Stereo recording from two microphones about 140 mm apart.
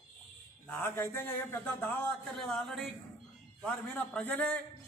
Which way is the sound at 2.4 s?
Centre (ahead or behind).